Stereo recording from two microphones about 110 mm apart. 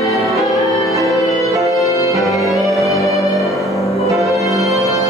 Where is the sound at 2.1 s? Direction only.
Centre (ahead or behind).